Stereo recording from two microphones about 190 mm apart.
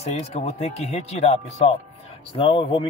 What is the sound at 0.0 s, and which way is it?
Speech, 35° left (ahead or behind).